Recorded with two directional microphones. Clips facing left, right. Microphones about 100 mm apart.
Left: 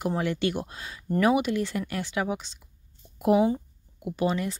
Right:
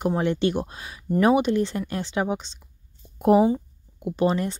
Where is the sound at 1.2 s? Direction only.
30° right (ahead or behind).